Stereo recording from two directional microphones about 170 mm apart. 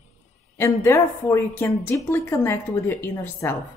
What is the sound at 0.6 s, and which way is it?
A woman's voice, 15° left (ahead or behind).